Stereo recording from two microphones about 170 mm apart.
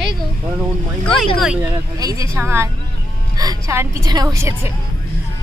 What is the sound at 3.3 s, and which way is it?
A woman's voice, 20° right (ahead or behind).